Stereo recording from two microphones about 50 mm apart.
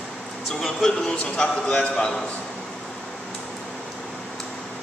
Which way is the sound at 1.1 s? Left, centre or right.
Left.